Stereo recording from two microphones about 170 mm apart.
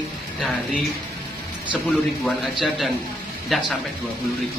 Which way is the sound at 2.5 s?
Centre (ahead or behind).